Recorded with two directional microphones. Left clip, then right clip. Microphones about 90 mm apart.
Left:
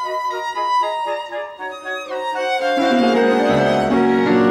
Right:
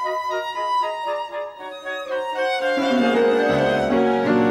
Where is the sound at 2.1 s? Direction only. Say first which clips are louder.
Left 2 dB; 45° left (ahead or behind).